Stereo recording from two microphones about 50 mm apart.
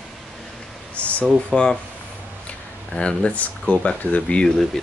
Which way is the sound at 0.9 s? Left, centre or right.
Left.